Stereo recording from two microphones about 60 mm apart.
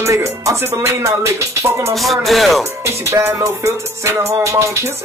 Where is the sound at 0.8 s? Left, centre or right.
Right.